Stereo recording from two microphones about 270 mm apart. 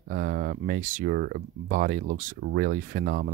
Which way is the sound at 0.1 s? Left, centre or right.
Right.